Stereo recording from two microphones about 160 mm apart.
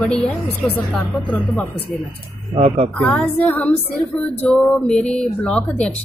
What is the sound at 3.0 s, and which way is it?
A woman's voice, 5° left (ahead or behind).